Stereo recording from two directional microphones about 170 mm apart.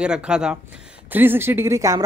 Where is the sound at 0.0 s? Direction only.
5° right (ahead or behind).